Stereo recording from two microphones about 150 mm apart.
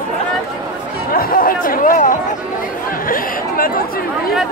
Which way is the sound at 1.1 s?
75° left (ahead or behind).